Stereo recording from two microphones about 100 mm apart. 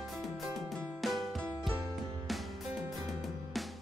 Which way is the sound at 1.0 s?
Centre (ahead or behind).